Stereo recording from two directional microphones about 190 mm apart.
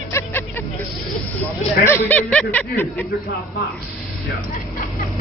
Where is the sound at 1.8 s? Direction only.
10° left (ahead or behind).